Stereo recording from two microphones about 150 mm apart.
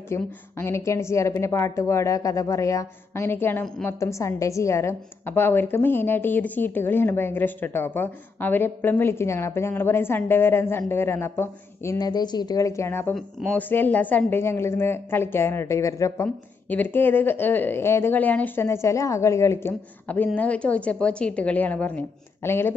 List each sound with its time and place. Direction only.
0.1 s a woman's voice: 15° left (ahead or behind)
13.1 s a woman's voice: 5° left (ahead or behind)